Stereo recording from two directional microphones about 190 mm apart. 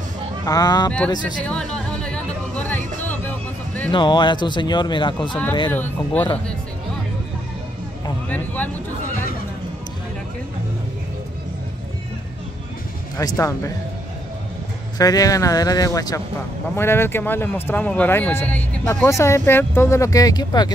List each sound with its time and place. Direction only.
0.5 s speech: 20° left (ahead or behind)
0.8 s speech: 5° left (ahead or behind)
1.4 s a sound: 5° left (ahead or behind)
3.0 s music: 10° left (ahead or behind)
3.9 s speech: 25° left (ahead or behind)
5.7 s speech: 10° left (ahead or behind)
13.2 s speech: 15° left (ahead or behind)
15.0 s speech: 20° left (ahead or behind)